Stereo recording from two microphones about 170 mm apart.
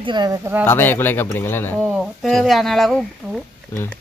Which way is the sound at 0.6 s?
10° left (ahead or behind).